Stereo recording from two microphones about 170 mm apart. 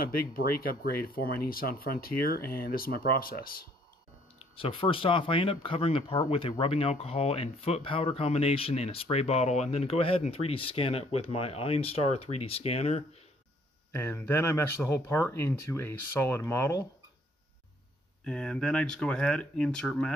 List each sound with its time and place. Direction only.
0.0 s speech: 60° left (ahead or behind)
4.4 s speech: 30° left (ahead or behind)
13.9 s speech: 15° left (ahead or behind)
18.2 s speech: 5° left (ahead or behind)